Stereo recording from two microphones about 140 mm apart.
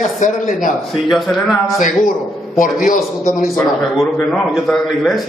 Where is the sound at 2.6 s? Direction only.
75° left (ahead or behind).